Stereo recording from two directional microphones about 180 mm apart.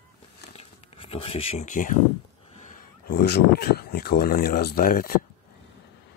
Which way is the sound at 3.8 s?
60° left (ahead or behind).